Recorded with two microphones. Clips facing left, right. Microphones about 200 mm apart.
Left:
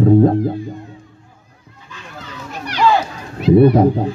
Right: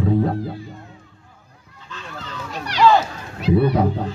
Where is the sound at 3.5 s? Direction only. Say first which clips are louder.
Left 8 dB; 45° left (ahead or behind).